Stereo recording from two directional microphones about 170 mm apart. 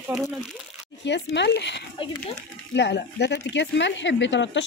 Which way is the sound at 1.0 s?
90° left.